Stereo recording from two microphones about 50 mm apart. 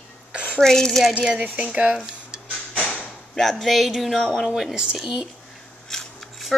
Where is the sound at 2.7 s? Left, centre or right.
Left.